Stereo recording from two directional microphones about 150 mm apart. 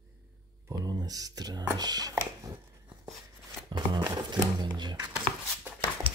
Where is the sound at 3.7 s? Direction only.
25° right (ahead or behind).